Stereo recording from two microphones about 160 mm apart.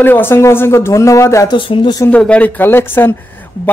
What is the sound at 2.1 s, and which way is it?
Speech, 10° left (ahead or behind).